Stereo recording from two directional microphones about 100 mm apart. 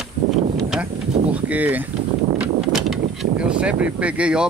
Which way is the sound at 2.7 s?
Centre (ahead or behind).